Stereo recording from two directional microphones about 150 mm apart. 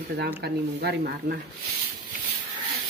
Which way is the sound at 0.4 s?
90° right.